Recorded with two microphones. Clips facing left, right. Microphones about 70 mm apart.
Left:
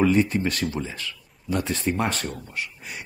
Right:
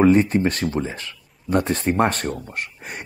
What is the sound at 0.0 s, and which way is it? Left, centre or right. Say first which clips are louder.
Speech: right 5 dB; right.